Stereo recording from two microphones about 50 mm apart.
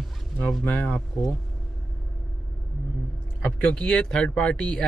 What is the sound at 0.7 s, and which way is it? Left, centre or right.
Speech, left.